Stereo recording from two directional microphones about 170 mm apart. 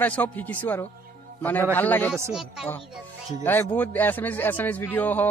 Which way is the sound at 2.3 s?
Centre (ahead or behind).